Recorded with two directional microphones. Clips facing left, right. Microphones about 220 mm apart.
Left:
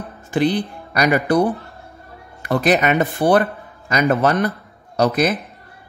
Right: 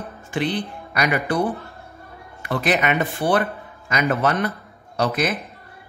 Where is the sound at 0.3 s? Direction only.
40° left (ahead or behind).